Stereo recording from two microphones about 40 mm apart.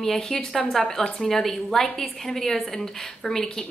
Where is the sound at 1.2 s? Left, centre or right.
Centre.